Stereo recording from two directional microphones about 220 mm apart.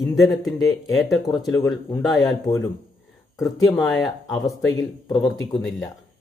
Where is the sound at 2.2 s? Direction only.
15° left (ahead or behind).